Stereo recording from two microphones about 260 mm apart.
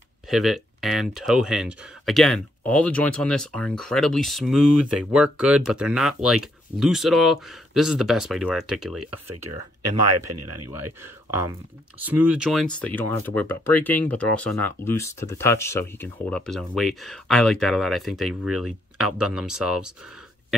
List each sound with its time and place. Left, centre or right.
0.3 s speech: centre
9.0 s speech: right
11.0 s speech: centre